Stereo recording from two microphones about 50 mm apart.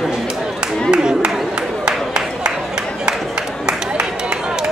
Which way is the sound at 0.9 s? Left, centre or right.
Centre.